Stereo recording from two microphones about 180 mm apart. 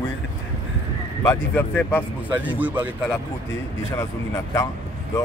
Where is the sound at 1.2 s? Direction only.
15° left (ahead or behind).